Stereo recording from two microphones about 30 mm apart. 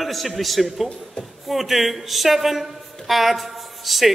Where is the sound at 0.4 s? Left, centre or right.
Centre.